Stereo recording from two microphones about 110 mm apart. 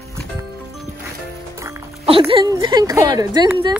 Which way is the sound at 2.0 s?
55° right (ahead or behind).